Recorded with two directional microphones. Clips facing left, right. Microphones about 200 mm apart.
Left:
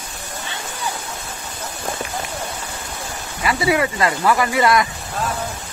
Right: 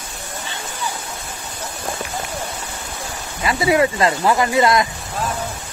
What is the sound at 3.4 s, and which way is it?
Speech, 25° right (ahead or behind).